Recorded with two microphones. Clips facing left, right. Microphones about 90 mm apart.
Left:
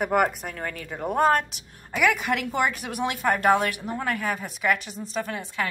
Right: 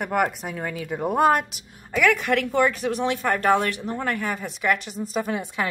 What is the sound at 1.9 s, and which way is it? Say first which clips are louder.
A woman's voice: right 3 dB; 10° left (ahead or behind).